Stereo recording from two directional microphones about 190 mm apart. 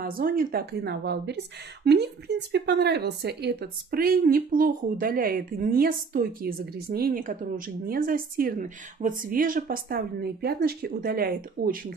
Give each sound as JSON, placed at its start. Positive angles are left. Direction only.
{"t": 0.0, "sound": "a woman's voice", "side_deg": -50}